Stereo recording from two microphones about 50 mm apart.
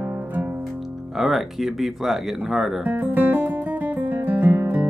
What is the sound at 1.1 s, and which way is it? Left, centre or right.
Speech, centre.